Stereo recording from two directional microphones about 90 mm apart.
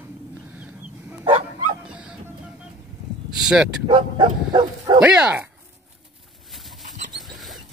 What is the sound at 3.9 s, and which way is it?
Speech, 60° right (ahead or behind).